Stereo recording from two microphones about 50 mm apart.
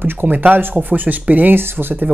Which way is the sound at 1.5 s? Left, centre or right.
Right.